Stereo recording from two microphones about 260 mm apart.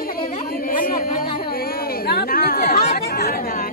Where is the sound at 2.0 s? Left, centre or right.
Left.